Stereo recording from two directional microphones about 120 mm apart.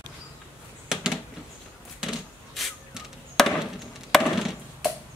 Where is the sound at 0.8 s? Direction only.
5° right (ahead or behind).